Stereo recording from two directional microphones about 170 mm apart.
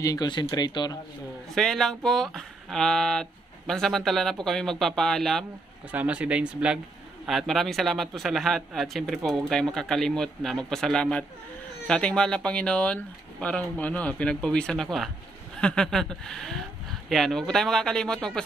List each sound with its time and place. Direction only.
0.0 s speech: 20° left (ahead or behind)
1.5 s speech: centre (ahead or behind)